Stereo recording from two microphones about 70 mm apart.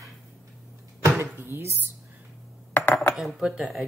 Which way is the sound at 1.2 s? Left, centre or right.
Right.